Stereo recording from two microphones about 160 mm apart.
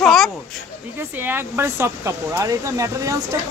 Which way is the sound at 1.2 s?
15° right (ahead or behind).